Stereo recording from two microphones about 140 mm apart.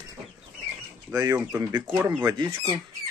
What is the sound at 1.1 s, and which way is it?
Speech, 25° right (ahead or behind).